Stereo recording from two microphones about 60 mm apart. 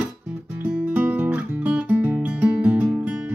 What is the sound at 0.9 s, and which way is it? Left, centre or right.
Guitar, right.